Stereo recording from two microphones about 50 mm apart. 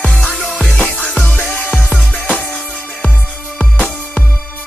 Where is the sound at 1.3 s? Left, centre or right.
Left.